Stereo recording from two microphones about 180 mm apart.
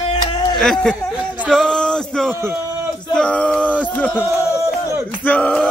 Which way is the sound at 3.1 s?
5° left (ahead or behind).